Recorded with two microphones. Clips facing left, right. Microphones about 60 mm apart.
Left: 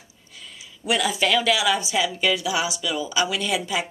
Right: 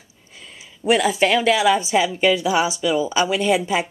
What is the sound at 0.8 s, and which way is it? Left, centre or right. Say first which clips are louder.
Speech: right 5 dB; right.